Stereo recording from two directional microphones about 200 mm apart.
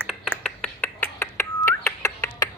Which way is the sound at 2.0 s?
15° left (ahead or behind).